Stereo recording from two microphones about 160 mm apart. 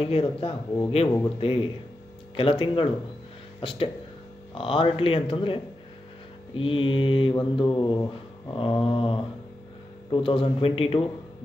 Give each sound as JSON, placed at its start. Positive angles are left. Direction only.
{"t": 0.0, "sound": "mantra", "side_deg": 35}